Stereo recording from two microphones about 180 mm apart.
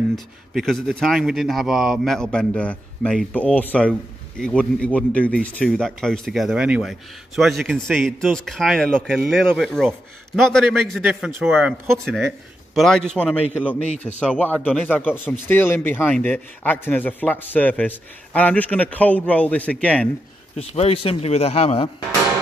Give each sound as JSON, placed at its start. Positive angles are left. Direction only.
{"t": 0.1, "sound": "speech", "side_deg": 0}
{"t": 20.5, "sound": "speech", "side_deg": 35}